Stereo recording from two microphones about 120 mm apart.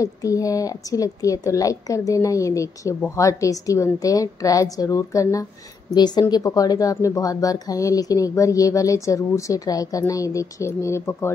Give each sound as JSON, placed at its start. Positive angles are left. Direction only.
{"t": 0.0, "sound": "a woman's voice", "side_deg": 30}